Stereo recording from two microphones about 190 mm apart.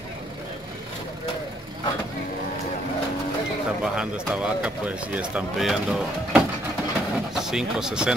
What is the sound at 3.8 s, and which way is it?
Speech, 5° right (ahead or behind).